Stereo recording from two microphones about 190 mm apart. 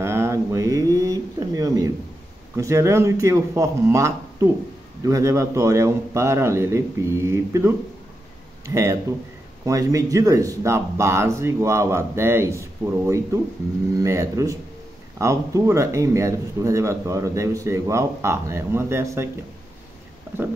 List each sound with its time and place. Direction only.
0.0 s pigeon: 15° right (ahead or behind)
2.5 s a man's voice: 15° right (ahead or behind)